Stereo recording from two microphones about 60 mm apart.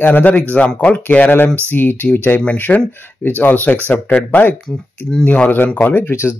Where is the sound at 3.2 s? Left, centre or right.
Left.